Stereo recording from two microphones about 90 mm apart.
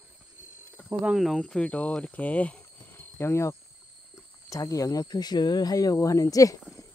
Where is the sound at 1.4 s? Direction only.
10° left (ahead or behind).